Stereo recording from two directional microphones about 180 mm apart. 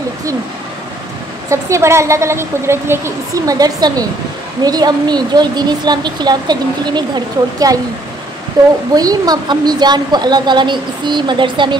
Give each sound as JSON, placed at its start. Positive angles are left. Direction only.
{"t": 1.5, "sound": "a woman's voice", "side_deg": -15}